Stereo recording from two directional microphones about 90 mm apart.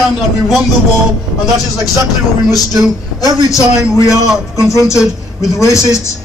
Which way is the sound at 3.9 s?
35° left (ahead or behind).